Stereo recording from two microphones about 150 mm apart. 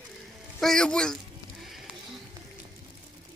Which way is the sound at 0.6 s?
5° left (ahead or behind).